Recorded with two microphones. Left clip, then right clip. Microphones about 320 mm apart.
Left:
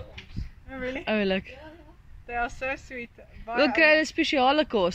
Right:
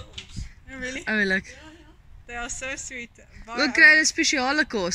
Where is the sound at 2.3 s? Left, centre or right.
Left.